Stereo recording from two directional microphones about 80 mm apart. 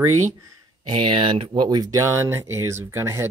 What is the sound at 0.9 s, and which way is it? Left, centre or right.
Speech, right.